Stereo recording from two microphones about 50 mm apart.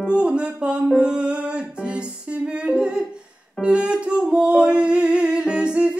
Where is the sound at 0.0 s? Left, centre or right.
Right.